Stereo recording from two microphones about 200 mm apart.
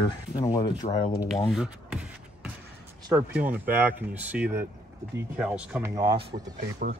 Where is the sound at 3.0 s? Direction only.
10° right (ahead or behind).